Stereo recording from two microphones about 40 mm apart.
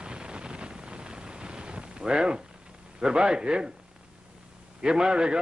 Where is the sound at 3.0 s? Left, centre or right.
Right.